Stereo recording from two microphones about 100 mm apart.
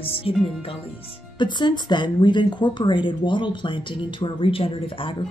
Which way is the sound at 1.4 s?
50° left (ahead or behind).